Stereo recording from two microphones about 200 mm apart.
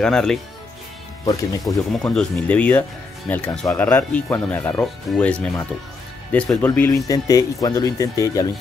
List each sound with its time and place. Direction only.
0.0 s speech: 5° left (ahead or behind)
1.2 s speech: 15° left (ahead or behind)
1.9 s speech: 5° left (ahead or behind)
6.5 s speech: 10° left (ahead or behind)